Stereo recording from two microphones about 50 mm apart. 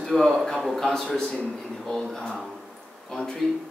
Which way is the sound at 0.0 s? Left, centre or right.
Centre.